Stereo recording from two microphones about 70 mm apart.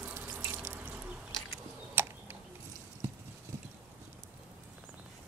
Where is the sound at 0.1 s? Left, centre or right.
Right.